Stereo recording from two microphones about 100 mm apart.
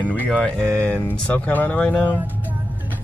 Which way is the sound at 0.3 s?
10° left (ahead or behind).